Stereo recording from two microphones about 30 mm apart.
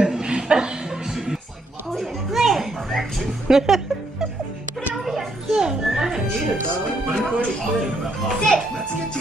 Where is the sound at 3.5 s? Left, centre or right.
Centre.